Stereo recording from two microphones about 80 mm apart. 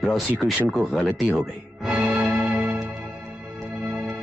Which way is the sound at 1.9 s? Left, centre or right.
Right.